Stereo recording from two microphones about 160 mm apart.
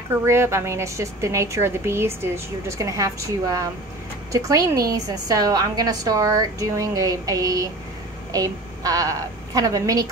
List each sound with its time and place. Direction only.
0.1 s a woman's voice: 15° right (ahead or behind)